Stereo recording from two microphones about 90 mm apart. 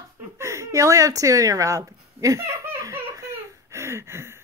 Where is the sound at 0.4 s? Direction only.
35° right (ahead or behind).